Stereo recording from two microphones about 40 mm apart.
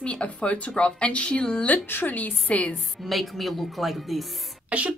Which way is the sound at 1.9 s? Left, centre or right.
Left.